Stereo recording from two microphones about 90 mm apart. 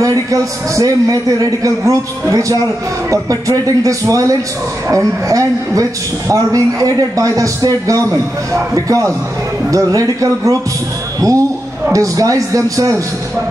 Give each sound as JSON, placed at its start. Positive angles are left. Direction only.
{"t": 0.0, "sound": "a woman's voice", "side_deg": -40}